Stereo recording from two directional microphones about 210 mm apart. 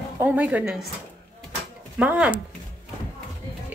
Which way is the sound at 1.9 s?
5° right (ahead or behind).